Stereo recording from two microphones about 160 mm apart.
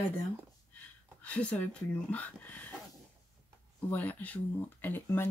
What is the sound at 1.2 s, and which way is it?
Speech, 10° left (ahead or behind).